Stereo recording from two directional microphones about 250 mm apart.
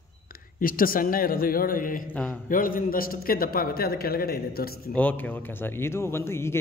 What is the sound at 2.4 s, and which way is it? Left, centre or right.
Speech, left.